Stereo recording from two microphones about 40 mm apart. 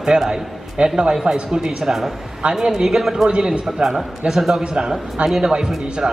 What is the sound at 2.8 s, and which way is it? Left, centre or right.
Speech, centre.